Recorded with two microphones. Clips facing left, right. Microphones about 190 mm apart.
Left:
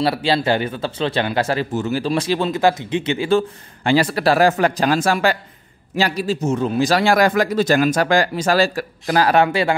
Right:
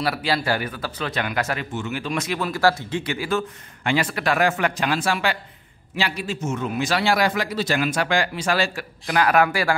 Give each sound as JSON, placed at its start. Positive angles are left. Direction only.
{"t": 0.0, "sound": "a man's voice", "side_deg": 25}